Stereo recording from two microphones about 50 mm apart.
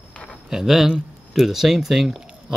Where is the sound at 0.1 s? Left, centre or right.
Left.